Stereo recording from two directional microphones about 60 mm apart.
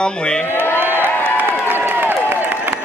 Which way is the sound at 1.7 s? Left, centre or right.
Right.